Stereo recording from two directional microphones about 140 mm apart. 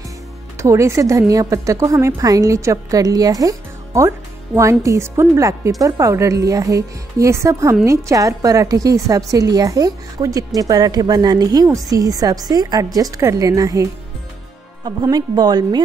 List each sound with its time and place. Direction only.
0.6 s a woman's voice: 20° right (ahead or behind)
15.0 s a woman's voice: 30° right (ahead or behind)